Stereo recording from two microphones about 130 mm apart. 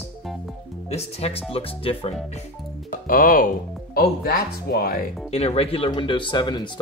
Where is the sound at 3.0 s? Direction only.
90° left.